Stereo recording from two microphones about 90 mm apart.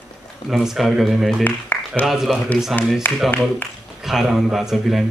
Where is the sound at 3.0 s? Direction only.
20° left (ahead or behind).